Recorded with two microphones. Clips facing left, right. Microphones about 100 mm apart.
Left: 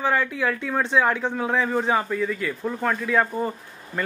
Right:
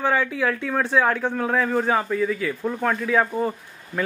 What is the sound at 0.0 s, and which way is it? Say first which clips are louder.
Speech: right 1 dB; centre (ahead or behind).